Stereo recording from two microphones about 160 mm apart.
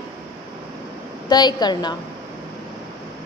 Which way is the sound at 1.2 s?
25° left (ahead or behind).